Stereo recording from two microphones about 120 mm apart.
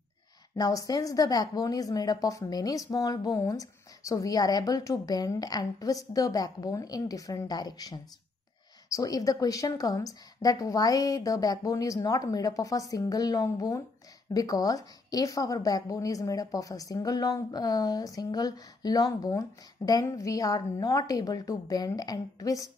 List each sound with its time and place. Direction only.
0.6 s a woman's voice: 30° left (ahead or behind)